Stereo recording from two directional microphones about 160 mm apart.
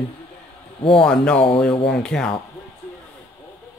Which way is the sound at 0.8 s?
5° left (ahead or behind).